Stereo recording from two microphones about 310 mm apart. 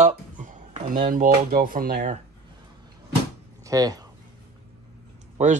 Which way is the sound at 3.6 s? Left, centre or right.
Centre.